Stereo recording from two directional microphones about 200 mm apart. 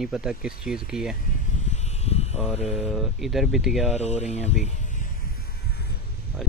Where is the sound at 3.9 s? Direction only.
35° left (ahead or behind).